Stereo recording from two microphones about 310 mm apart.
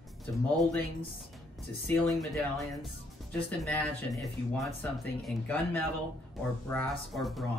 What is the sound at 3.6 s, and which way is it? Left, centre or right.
Speech, centre.